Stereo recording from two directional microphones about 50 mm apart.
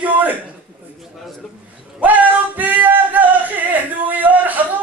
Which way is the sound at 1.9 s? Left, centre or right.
Right.